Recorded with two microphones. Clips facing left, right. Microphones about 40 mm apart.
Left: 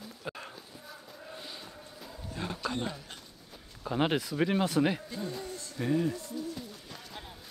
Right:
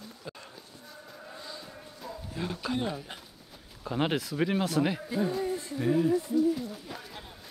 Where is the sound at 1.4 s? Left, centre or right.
Left.